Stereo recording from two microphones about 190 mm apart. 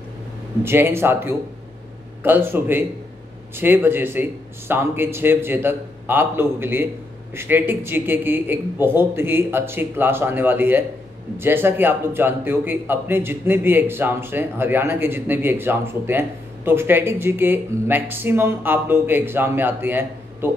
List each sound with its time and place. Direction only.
0.7 s a man's voice: 10° right (ahead or behind)